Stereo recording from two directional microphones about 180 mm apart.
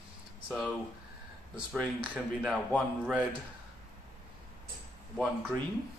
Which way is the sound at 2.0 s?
5° right (ahead or behind).